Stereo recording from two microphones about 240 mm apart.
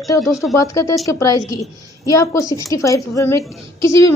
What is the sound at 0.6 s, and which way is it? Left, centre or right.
A man's voice, centre.